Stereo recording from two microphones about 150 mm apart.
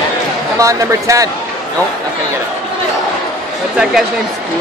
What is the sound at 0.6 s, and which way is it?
Speech, 20° right (ahead or behind).